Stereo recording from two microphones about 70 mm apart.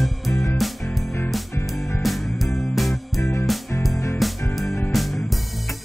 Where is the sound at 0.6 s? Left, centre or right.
Centre.